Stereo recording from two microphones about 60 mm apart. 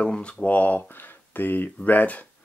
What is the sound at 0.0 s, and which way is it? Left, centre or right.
Speech, centre.